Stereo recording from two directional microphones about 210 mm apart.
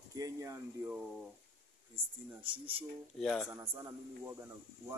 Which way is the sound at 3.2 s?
Centre (ahead or behind).